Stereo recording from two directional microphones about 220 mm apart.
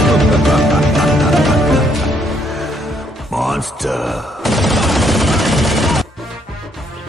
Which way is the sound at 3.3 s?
Centre (ahead or behind).